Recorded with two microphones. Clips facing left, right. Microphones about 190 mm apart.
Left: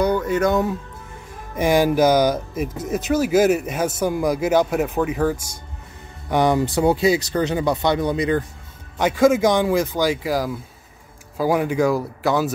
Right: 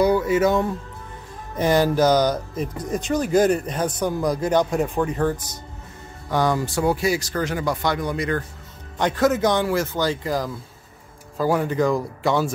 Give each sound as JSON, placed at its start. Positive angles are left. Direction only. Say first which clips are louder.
{"t": 0.0, "sound": "speech", "louder": "right 1 dB", "side_deg": -10}
{"t": 1.6, "sound": "speech", "louder": "left 2 dB", "side_deg": 10}
{"t": 8.9, "sound": "speech", "louder": "left 4 dB", "side_deg": 10}